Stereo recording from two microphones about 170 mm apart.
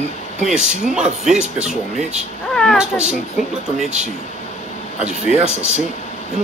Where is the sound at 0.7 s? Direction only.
5° right (ahead or behind).